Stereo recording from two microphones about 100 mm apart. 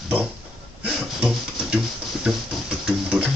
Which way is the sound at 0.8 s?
10° right (ahead or behind).